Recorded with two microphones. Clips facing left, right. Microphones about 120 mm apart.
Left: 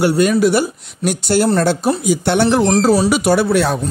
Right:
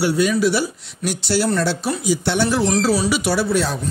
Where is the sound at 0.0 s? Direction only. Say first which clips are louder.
Left 4 dB; 55° left (ahead or behind).